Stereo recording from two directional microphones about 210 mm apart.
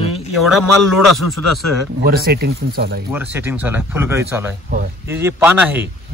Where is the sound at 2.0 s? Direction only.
45° right (ahead or behind).